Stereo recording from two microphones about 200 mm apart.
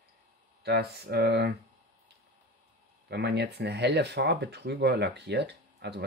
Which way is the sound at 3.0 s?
55° right (ahead or behind).